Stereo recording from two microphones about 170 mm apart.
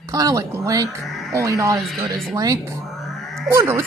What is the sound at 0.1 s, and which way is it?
Speech, 20° right (ahead or behind).